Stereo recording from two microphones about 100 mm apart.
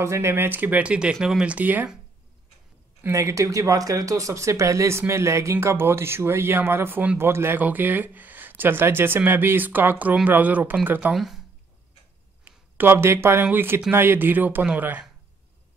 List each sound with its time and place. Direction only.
0.0 s speech: 25° right (ahead or behind)
3.0 s speech: 30° right (ahead or behind)
11.1 s speech: centre (ahead or behind)
12.4 s speech: 20° right (ahead or behind)